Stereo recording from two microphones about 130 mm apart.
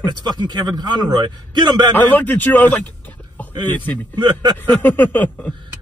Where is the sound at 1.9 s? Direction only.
15° left (ahead or behind).